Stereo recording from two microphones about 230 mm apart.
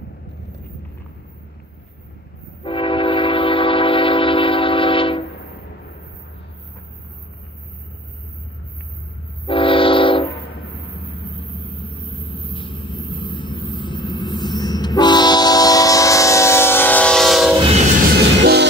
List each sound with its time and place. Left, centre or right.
2.6 s train: left
9.5 s train: left
11.5 s vehicle: left; by 17.6 s centre
18.4 s train: right